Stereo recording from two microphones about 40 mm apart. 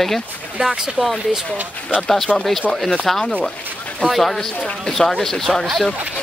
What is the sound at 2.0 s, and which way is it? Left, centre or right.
Speech, centre.